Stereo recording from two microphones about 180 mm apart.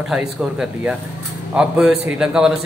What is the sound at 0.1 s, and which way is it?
A man's voice, 5° right (ahead or behind).